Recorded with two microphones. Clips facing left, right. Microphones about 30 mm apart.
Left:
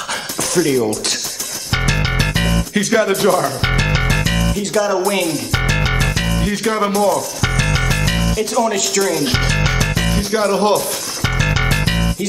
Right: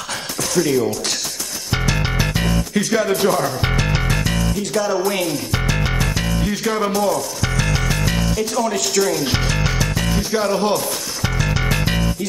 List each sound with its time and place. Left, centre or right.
0.4 s speech: centre
1.7 s music: centre
2.9 s speech: centre
3.4 s music: left
4.6 s speech: centre
5.5 s music: left
7.4 s music: left
8.9 s speech: centre
9.2 s music: centre